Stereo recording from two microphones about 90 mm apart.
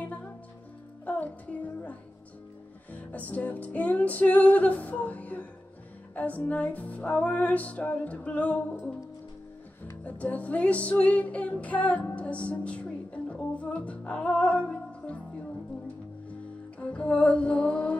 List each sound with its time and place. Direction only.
0.0 s music: 15° left (ahead or behind)
10.0 s music: 15° left (ahead or behind)
16.8 s music: 15° left (ahead or behind)